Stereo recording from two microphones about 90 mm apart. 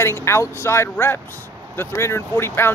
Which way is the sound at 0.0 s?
30° left (ahead or behind).